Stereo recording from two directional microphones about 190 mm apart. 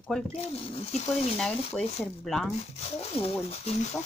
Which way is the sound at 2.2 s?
Centre (ahead or behind).